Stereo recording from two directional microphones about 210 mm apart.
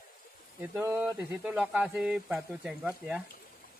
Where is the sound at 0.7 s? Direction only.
10° right (ahead or behind).